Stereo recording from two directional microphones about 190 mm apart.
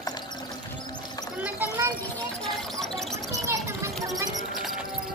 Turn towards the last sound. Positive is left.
turn(degrees=-15)  # may be behind; listen again after turning